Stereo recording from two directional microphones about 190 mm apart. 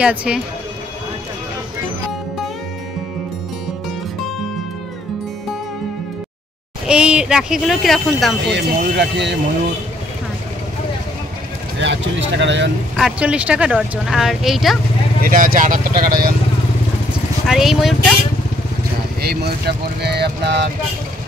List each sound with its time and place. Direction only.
0.0 s speech: 5° right (ahead or behind)
6.9 s speech: 5° right (ahead or behind)
8.5 s speech: 65° right (ahead or behind)
11.8 s speech: 70° right (ahead or behind)
12.9 s speech: 5° right (ahead or behind)
15.2 s speech: 45° right (ahead or behind)
17.5 s speech: centre (ahead or behind)
19.2 s speech: 60° right (ahead or behind)